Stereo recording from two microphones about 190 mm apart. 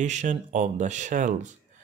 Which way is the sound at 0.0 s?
40° right (ahead or behind).